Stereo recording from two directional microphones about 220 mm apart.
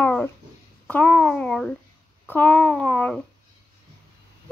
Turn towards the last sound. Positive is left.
turn(degrees=5)  # may be behind; listen again after turning